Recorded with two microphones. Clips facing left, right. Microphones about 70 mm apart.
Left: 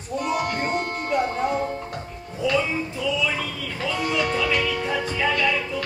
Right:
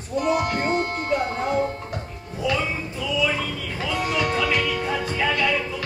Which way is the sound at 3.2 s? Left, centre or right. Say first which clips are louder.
Right 2 dB; centre.